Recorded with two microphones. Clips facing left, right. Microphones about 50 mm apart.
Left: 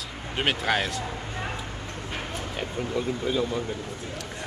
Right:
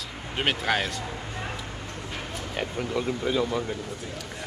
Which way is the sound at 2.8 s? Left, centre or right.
Right.